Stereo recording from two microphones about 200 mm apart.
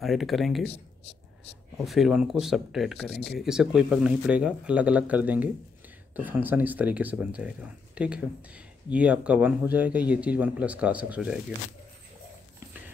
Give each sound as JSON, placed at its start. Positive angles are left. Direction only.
{"t": 0.0, "sound": "speech", "side_deg": 0}
{"t": 1.9, "sound": "speech", "side_deg": 0}
{"t": 3.1, "sound": "speech", "side_deg": 60}
{"t": 3.3, "sound": "speech", "side_deg": -5}